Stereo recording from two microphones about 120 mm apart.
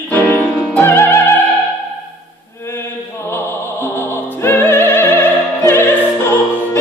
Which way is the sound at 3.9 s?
20° left (ahead or behind).